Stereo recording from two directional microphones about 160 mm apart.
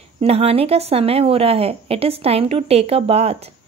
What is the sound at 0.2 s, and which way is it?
A woman's voice, 40° right (ahead or behind).